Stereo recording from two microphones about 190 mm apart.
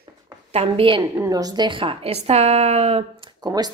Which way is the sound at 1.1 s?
15° right (ahead or behind).